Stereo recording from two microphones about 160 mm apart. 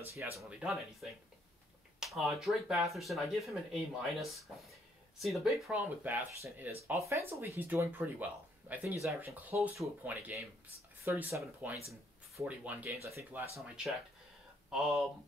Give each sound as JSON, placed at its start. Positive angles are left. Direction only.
{"t": 0.0, "sound": "speech", "side_deg": -15}
{"t": 0.5, "sound": "speech", "side_deg": -5}
{"t": 14.7, "sound": "speech", "side_deg": -5}